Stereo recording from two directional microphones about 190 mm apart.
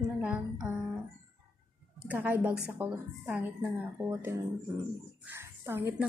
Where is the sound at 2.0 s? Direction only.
10° right (ahead or behind).